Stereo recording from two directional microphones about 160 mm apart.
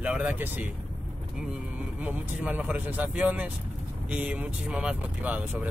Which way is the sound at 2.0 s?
10° right (ahead or behind).